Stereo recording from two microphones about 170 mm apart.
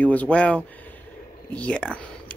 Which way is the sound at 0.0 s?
10° left (ahead or behind).